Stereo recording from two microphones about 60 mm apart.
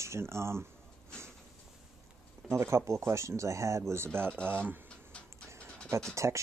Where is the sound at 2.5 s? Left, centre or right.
Right.